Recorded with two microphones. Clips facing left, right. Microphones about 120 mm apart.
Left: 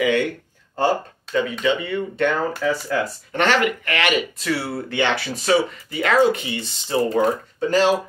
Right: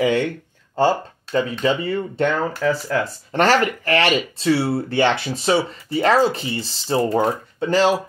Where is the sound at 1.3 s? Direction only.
35° right (ahead or behind).